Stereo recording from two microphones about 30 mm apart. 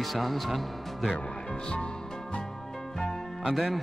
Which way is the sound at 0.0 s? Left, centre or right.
Centre.